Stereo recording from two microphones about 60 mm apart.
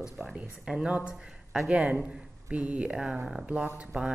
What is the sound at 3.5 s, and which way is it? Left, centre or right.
Speech, centre.